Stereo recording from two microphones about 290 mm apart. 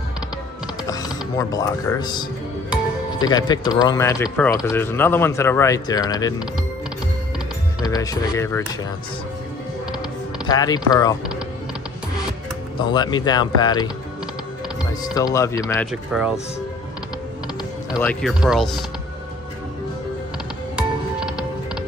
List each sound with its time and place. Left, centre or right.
0.8 s speech: centre
7.8 s speech: centre
10.4 s speech: centre
12.7 s speech: centre
15.1 s speech: centre
17.9 s speech: centre
20.7 s music: centre